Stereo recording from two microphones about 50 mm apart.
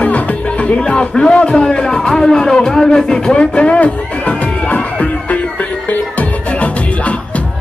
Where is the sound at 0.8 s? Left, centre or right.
Centre.